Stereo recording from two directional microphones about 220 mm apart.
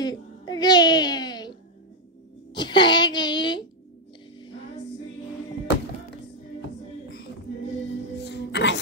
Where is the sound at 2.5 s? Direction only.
20° left (ahead or behind).